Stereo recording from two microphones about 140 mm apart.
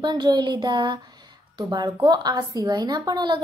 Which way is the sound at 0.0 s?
30° right (ahead or behind).